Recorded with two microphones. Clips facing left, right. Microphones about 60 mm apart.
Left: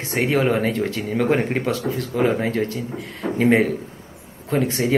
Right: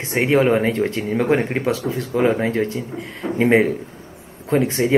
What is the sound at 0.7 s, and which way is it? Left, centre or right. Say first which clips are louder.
Speech: right 3 dB; right.